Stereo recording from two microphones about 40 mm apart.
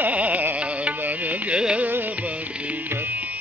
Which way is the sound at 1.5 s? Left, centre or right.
Right.